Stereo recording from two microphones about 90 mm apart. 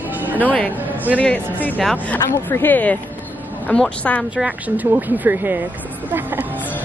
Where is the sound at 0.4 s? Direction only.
15° left (ahead or behind).